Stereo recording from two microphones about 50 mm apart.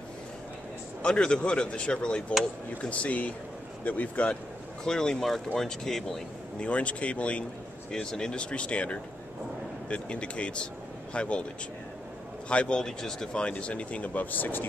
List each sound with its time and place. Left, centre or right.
1.0 s speech: centre
4.8 s speech: centre
6.6 s speech: left
7.9 s speech: centre
12.4 s speech: left